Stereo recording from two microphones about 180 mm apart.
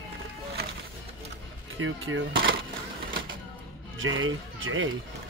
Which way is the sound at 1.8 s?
90° right.